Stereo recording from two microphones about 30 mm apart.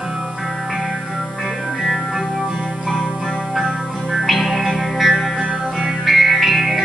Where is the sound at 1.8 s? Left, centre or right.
Centre.